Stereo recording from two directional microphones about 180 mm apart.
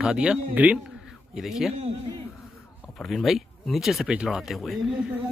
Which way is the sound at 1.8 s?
35° right (ahead or behind).